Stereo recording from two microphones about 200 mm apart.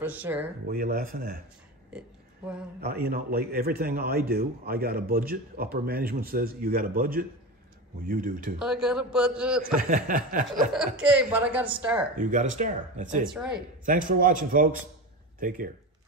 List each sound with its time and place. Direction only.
0.0 s a woman's voice: 10° right (ahead or behind)
0.7 s a man's voice: 45° right (ahead or behind)
1.9 s a sound: 5° right (ahead or behind)
2.8 s a man's voice: 50° right (ahead or behind)
8.5 s a man's voice: 5° right (ahead or behind)
9.8 s a man's voice: 45° right (ahead or behind)
11.0 s a woman's voice: 5° right (ahead or behind)
12.2 s speech: 40° right (ahead or behind)
13.2 s a man's voice: 5° right (ahead or behind)
13.8 s a man's voice: 40° right (ahead or behind)